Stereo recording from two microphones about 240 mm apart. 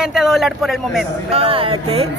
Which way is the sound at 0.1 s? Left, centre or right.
Centre.